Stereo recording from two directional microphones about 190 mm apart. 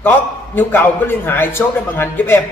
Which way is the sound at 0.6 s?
10° left (ahead or behind).